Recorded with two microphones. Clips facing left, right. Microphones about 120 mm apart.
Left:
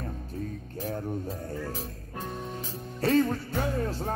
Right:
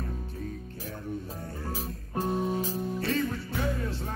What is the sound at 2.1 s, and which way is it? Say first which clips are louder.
Music: right 8 dB; 35° right (ahead or behind).